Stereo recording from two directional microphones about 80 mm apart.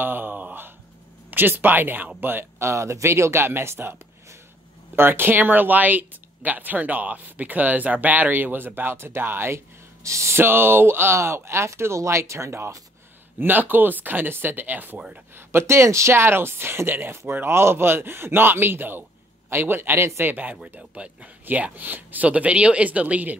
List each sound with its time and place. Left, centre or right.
0.0 s a sound: right
1.3 s speech: right
13.4 s speech: right